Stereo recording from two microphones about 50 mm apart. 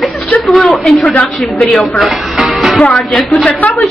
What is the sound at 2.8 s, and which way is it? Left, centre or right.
Speech, left.